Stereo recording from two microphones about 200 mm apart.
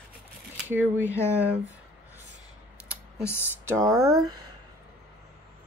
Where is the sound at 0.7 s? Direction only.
10° right (ahead or behind).